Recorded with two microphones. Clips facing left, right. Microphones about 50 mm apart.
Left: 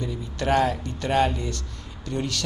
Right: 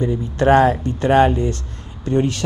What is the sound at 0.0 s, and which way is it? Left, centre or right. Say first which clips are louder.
Speech: right 11 dB; right.